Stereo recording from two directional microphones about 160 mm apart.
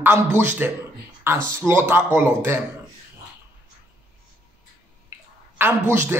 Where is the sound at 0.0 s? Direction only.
15° right (ahead or behind).